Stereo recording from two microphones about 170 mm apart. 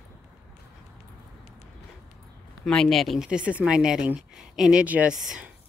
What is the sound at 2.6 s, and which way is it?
Speech, 5° left (ahead or behind).